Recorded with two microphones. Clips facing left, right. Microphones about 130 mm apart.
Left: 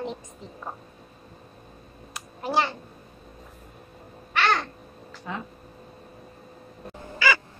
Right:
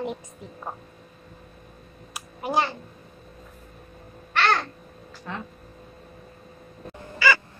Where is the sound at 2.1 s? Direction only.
5° right (ahead or behind).